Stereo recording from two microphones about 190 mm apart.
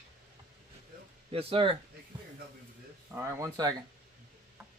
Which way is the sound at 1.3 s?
30° right (ahead or behind).